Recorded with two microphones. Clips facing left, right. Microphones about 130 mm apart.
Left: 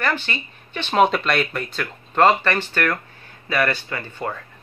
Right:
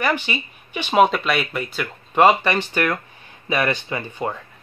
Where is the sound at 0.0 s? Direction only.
15° right (ahead or behind).